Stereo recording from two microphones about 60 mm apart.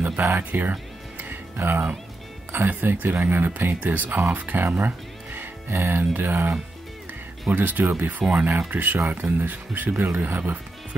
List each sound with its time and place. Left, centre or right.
0.4 s music: right
1.6 s speech: right
7.5 s speech: right